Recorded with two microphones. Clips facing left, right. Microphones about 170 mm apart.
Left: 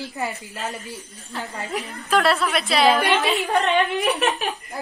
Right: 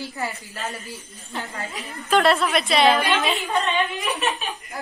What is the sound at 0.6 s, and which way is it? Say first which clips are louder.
A woman's voice: left 1 dB; centre (ahead or behind).